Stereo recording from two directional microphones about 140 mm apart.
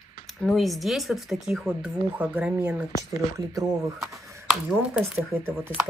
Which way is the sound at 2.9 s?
55° left (ahead or behind).